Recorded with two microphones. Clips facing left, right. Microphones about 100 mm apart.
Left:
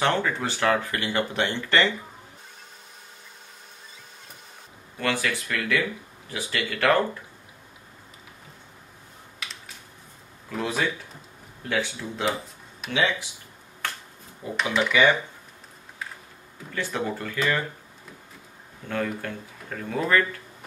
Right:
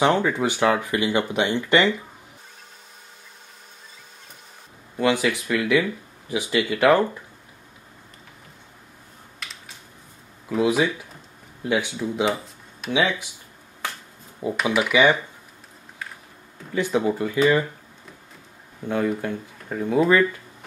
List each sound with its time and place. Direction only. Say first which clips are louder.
0.0 s speech: right 5 dB; 15° right (ahead or behind)
4.9 s speech: right 6 dB; 15° right (ahead or behind)
10.5 s speech: right 7 dB; 10° right (ahead or behind)
12.8 s speech: right 5 dB; centre (ahead or behind)
13.8 s finger snapping: right 1 dB; 15° right (ahead or behind)
14.6 s speech: right 2 dB; 10° right (ahead or behind)
16.7 s speech: right 7 dB; 15° right (ahead or behind)
18.9 s speech: right 5 dB; 15° right (ahead or behind)